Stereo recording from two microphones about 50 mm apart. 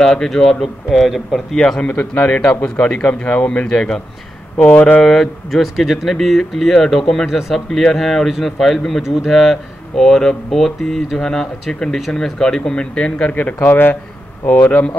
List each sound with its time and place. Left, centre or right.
0.0 s speech: centre
2.0 s speech: left
4.6 s speech: left
5.0 s speech: centre
13.3 s speech: left